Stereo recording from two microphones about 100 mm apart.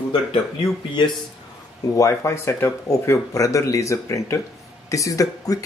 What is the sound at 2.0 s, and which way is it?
Speech, 30° left (ahead or behind).